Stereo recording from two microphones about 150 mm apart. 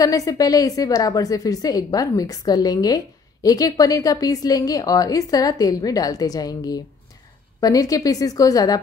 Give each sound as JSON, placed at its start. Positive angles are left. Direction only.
{"t": 0.0, "sound": "a woman's voice", "side_deg": 25}